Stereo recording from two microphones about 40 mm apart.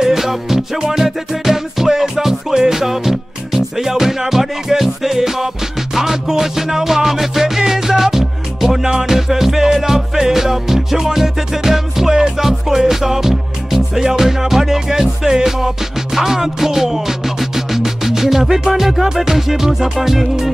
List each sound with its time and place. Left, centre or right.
0.0 s music: centre